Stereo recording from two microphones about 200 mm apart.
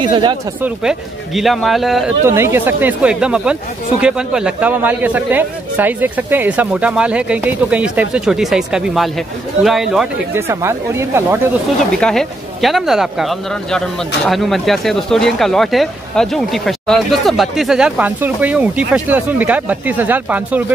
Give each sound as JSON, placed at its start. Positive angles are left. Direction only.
{"t": 0.0, "sound": "speech", "side_deg": -20}
{"t": 0.6, "sound": "speech", "side_deg": 0}
{"t": 2.2, "sound": "a man's voice", "side_deg": -15}
{"t": 10.5, "sound": "a man's voice", "side_deg": -15}
{"t": 12.0, "sound": "speech", "side_deg": 0}